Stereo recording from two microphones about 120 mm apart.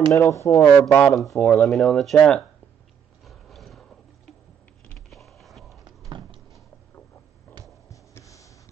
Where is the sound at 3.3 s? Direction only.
Centre (ahead or behind).